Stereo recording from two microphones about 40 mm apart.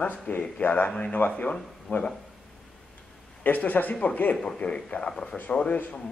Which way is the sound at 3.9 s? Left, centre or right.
Left.